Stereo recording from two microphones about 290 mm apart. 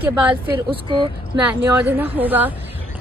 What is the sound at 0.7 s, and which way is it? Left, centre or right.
Speech, centre.